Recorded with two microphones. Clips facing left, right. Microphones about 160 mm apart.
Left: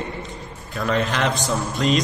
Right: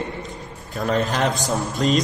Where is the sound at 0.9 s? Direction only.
40° right (ahead or behind).